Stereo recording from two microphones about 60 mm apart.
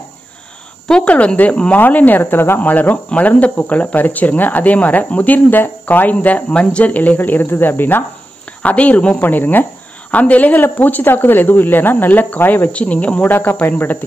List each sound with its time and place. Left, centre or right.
0.8 s cricket: centre
1.1 s speech: left
8.6 s speech: left